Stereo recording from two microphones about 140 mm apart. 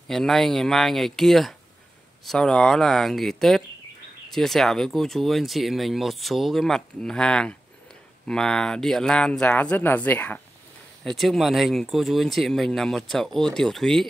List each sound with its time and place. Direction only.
0.1 s speech: 5° left (ahead or behind)
11.1 s speech: centre (ahead or behind)